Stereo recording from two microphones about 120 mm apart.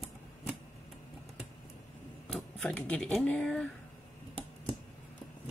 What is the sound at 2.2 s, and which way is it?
Speech, 5° left (ahead or behind).